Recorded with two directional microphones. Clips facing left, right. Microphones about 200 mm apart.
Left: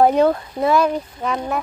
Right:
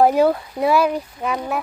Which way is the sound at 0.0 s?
5° right (ahead or behind).